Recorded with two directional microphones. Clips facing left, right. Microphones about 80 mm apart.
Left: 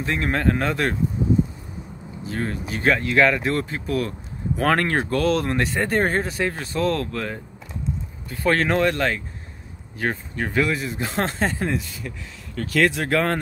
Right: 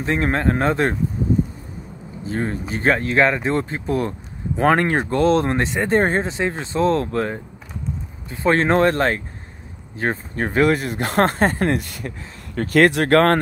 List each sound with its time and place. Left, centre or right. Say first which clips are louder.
0.0 s a man's voice: right 2 dB; right
2.2 s a man's voice: right 3 dB; right
12.5 s speech: right 5 dB; right